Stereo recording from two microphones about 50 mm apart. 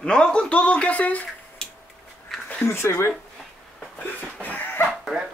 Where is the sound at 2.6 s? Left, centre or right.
Left.